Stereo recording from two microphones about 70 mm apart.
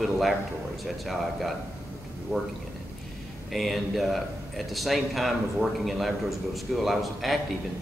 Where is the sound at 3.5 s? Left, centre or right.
Centre.